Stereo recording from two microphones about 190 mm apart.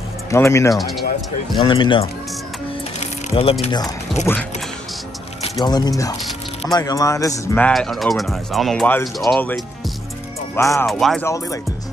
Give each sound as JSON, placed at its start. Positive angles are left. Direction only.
{"t": 0.3, "sound": "speech", "side_deg": 15}
{"t": 0.7, "sound": "speech", "side_deg": 0}
{"t": 1.6, "sound": "speech", "side_deg": 25}
{"t": 3.0, "sound": "music", "side_deg": 35}
{"t": 5.4, "sound": "speech", "side_deg": 20}
{"t": 10.9, "sound": "speech", "side_deg": 0}
{"t": 11.2, "sound": "speech", "side_deg": 15}